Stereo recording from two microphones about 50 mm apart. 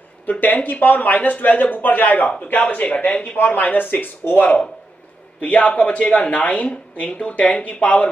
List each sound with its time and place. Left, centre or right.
0.3 s speech: left
5.4 s speech: left